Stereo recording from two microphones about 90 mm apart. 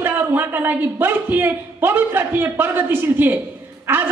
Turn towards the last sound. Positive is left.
turn(degrees=-25)  # may be behind; listen again after turning